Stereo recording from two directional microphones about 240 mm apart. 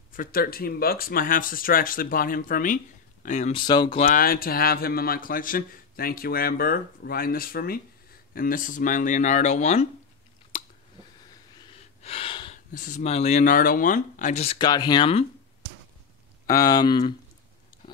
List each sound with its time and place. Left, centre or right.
0.1 s a man's voice: left
3.6 s speech: centre
4.0 s a man's voice: left
10.5 s chewing: left
12.0 s gasp: left
12.7 s speech: left
16.4 s speech: centre